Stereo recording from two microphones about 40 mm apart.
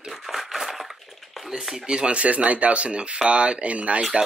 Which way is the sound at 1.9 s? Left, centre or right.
Right.